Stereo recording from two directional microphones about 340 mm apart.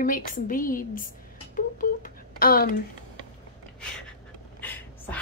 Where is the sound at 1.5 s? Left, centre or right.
Left.